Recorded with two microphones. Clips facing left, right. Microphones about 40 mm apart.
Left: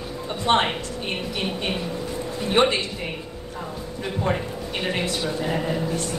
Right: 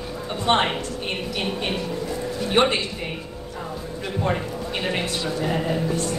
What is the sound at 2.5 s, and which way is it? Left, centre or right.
Speech, right.